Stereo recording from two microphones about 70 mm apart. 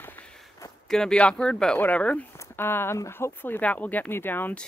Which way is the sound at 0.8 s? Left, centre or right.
Centre.